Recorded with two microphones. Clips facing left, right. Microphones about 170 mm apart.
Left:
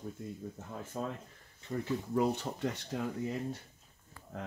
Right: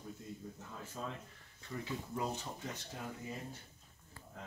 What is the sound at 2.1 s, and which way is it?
Speech, 65° left (ahead or behind).